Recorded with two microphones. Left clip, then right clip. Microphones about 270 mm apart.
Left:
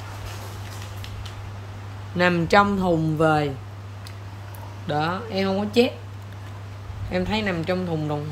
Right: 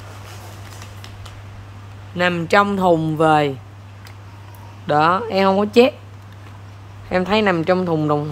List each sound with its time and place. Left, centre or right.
2.1 s speech: centre
4.8 s speech: centre
7.1 s speech: centre